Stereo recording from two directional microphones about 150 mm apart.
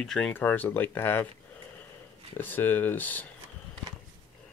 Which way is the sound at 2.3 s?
15° left (ahead or behind).